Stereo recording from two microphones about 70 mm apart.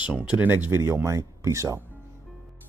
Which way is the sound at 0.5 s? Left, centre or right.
Right.